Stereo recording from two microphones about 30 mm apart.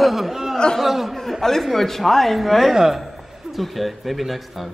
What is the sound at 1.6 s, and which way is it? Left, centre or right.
A man's voice, centre.